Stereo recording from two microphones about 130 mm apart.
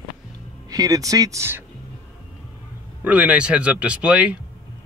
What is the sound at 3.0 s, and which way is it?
Speech, 10° right (ahead or behind).